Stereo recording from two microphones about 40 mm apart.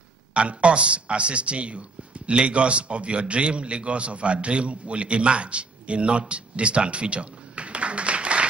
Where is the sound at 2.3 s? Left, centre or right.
Right.